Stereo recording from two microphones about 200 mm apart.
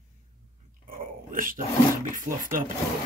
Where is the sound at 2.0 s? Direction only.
40° right (ahead or behind).